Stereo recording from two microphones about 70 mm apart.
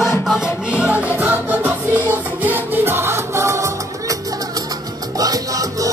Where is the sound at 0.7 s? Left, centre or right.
Centre; by 3.6 s right.